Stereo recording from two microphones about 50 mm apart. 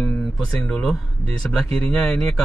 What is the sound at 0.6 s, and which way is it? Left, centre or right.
Speech, centre.